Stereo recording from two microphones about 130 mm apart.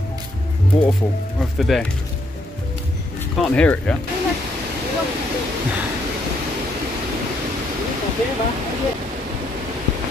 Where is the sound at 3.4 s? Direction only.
10° left (ahead or behind).